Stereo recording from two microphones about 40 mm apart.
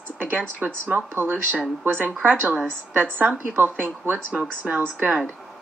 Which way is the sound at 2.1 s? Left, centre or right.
Right.